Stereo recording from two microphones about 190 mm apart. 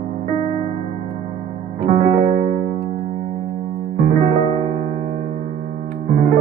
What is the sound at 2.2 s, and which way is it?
Music, 30° right (ahead or behind).